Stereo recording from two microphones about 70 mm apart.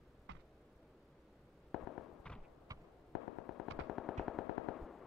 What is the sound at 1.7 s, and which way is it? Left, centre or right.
Fireworks, centre.